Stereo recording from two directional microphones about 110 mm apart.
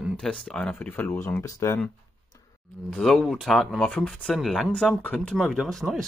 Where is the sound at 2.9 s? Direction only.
5° left (ahead or behind).